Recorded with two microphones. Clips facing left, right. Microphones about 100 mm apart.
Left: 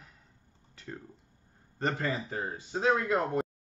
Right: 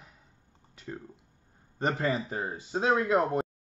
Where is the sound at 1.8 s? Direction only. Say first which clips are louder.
Right 3 dB; 15° right (ahead or behind).